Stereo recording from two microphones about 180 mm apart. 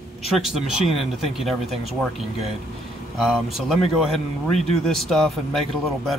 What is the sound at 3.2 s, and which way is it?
Speech, centre (ahead or behind).